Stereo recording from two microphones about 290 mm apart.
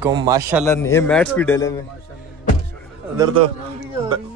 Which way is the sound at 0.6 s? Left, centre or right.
Centre.